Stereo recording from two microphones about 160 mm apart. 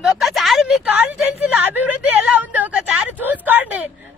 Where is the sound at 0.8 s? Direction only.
10° right (ahead or behind).